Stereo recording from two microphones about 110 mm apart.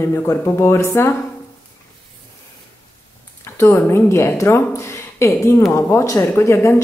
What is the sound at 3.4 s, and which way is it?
A woman's voice, 25° left (ahead or behind).